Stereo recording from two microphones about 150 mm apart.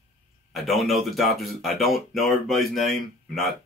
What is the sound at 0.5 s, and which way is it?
Speech, centre (ahead or behind).